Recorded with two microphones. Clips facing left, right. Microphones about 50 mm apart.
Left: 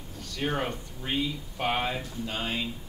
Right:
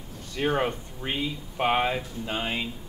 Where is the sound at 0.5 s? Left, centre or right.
Centre.